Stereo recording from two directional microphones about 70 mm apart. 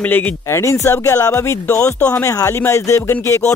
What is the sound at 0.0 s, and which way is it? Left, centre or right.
Speech, left.